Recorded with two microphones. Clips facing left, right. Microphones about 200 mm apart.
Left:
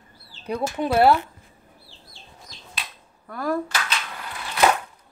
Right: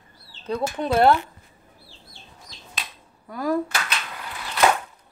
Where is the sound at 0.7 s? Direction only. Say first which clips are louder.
Even; 5° left (ahead or behind).